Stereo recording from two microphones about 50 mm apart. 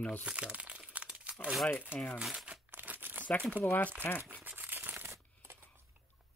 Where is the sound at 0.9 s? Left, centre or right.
Right.